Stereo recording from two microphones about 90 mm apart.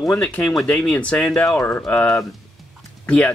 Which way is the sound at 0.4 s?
5° left (ahead or behind).